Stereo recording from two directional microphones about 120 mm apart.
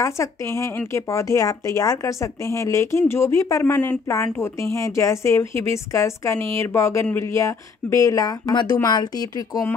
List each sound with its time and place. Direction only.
0.0 s speech: 25° left (ahead or behind)